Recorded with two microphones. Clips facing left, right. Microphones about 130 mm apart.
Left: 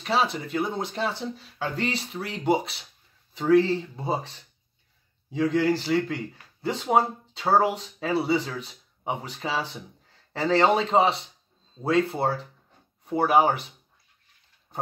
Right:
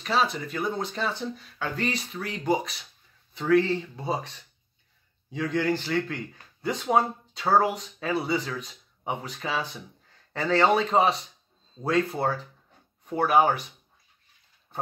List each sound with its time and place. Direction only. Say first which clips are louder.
0.0 s speech: left 1 dB; 25° left (ahead or behind)